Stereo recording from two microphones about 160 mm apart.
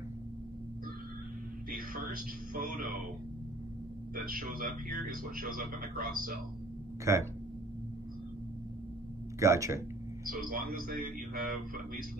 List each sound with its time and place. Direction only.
1.7 s a man's voice: 65° right (ahead or behind)
4.1 s a man's voice: 60° right (ahead or behind)
7.1 s speech: 20° right (ahead or behind)
9.4 s speech: 20° right (ahead or behind)
10.4 s a man's voice: 60° right (ahead or behind)